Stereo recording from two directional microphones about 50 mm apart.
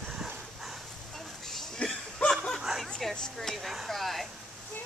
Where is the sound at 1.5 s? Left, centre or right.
Centre.